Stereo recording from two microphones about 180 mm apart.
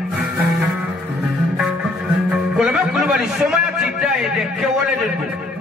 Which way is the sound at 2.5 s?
5° right (ahead or behind).